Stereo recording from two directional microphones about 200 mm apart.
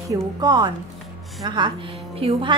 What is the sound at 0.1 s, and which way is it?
A woman's voice, 20° right (ahead or behind).